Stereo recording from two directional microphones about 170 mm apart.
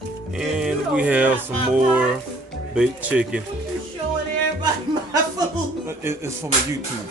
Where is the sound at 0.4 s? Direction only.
5° right (ahead or behind).